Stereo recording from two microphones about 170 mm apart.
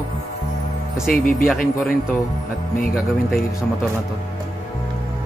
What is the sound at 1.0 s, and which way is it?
Speech, 55° left (ahead or behind).